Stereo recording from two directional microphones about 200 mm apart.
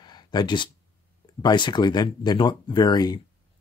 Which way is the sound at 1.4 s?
20° left (ahead or behind).